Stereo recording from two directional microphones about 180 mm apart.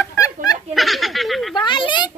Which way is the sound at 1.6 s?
25° left (ahead or behind).